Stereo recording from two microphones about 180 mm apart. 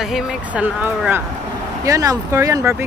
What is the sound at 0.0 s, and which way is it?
Speech, 5° right (ahead or behind).